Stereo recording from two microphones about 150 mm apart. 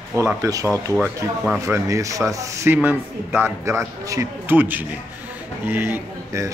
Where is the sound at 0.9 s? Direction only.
5° right (ahead or behind).